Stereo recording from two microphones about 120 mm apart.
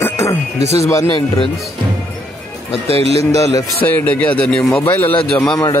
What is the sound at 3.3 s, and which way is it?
Speech, 25° left (ahead or behind).